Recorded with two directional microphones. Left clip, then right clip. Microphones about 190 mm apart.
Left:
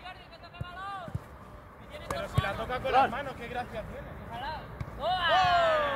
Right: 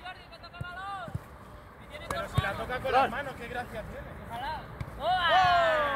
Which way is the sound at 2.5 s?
15° right (ahead or behind).